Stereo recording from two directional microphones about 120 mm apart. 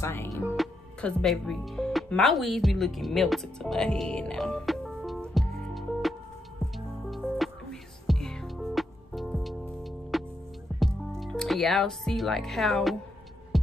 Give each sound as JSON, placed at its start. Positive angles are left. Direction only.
{"t": 0.0, "sound": "speech", "side_deg": 20}
{"t": 0.6, "sound": "speech", "side_deg": 0}
{"t": 7.1, "sound": "music", "side_deg": 0}
{"t": 10.8, "sound": "speech", "side_deg": 0}